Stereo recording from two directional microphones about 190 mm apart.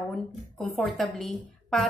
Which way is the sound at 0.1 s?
Centre (ahead or behind).